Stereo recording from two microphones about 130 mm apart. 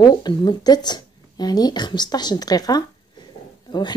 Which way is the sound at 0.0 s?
35° left (ahead or behind).